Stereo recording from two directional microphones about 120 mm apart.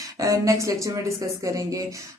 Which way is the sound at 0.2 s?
25° right (ahead or behind).